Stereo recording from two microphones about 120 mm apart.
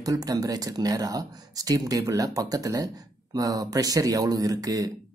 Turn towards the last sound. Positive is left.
turn(degrees=-30)  # may be behind; listen again after turning